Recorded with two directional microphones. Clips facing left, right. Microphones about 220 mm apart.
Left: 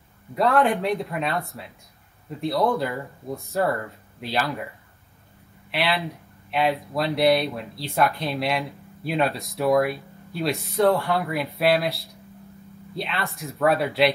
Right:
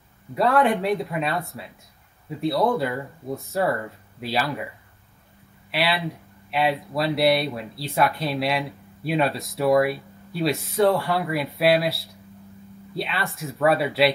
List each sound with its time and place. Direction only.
0.3 s speech: centre (ahead or behind)
5.7 s speech: centre (ahead or behind)